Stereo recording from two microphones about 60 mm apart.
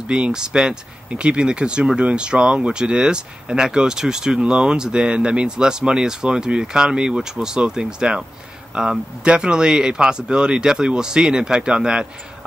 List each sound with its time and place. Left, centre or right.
0.1 s speech: centre